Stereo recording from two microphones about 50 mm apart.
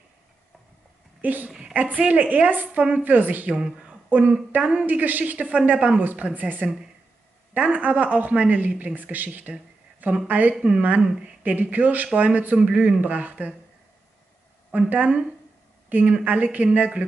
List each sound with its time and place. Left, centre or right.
1.2 s a woman's voice: right
11.5 s speech: right
14.7 s speech: right